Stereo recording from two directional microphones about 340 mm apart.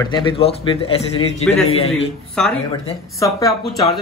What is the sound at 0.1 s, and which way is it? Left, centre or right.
Speech, centre.